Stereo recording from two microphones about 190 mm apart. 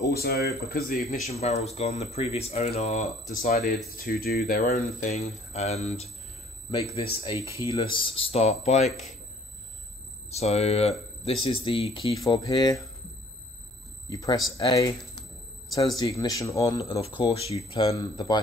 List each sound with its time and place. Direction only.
0.0 s speech: 55° left (ahead or behind)
1.2 s speech: 35° left (ahead or behind); by 4.4 s 50° left (ahead or behind)
4.6 s speech: 40° left (ahead or behind)
7.3 s speech: 15° right (ahead or behind)
7.7 s speech: 25° left (ahead or behind)
10.3 s speech: 35° left (ahead or behind)
14.0 s speech: 20° left (ahead or behind)
17.9 s speech: 20° left (ahead or behind)